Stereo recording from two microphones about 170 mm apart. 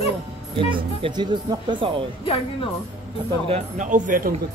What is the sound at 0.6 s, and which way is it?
Speech, 30° right (ahead or behind).